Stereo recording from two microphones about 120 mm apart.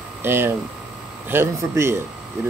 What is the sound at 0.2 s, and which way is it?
Speech, 20° right (ahead or behind).